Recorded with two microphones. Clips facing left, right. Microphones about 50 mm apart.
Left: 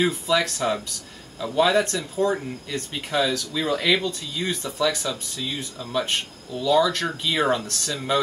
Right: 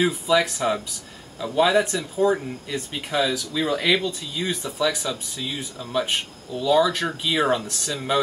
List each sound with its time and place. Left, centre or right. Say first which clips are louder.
0.0 s speech: right 2 dB; centre